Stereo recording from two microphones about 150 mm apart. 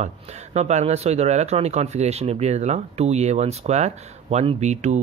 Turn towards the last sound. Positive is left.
turn(degrees=-50)  # may be behind; listen again after turning